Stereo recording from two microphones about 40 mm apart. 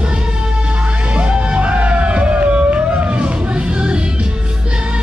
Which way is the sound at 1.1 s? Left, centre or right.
Right.